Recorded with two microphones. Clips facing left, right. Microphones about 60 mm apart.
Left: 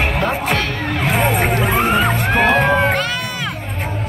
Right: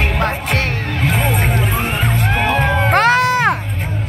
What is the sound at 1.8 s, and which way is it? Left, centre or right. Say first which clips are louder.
Music: left 5 dB; left.